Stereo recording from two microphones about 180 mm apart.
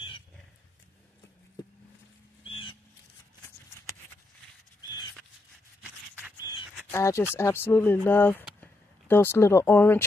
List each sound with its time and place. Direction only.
6.9 s speech: 15° left (ahead or behind)